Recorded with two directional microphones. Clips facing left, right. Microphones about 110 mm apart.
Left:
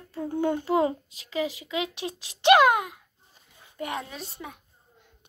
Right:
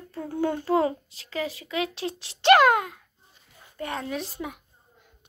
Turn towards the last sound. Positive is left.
turn(degrees=-5)  # may be behind; listen again after turning